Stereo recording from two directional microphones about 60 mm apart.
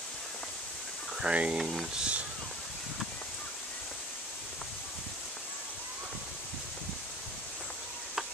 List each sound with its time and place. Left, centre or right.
1.2 s speech: centre
1.6 s speech: centre
2.0 s speech: centre